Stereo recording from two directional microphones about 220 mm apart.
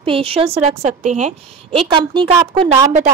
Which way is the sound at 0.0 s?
25° right (ahead or behind).